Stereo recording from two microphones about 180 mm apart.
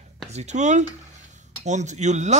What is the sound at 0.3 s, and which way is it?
Speech, 40° right (ahead or behind).